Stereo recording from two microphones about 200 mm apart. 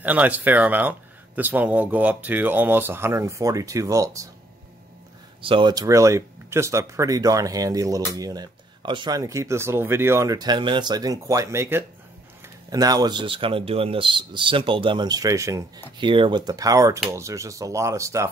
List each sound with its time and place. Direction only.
0.0 s speech: 10° right (ahead or behind)
5.4 s speech: 25° right (ahead or behind)